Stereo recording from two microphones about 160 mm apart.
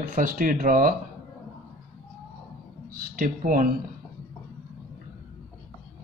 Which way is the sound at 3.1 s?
60° right (ahead or behind).